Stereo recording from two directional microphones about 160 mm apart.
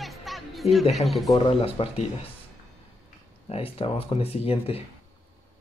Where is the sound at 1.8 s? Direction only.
35° left (ahead or behind).